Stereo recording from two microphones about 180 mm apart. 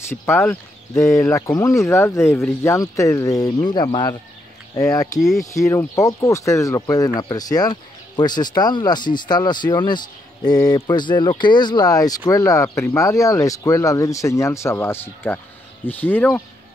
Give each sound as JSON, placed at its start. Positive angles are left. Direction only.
{"t": 0.1, "sound": "speech", "side_deg": 15}
{"t": 5.4, "sound": "speech", "side_deg": 15}